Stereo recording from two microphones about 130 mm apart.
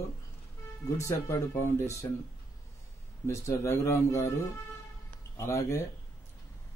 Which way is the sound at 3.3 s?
20° left (ahead or behind).